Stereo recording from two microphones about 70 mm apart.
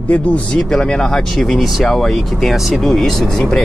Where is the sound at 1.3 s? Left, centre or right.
Centre.